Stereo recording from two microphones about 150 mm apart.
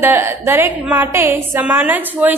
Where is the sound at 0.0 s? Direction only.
15° right (ahead or behind).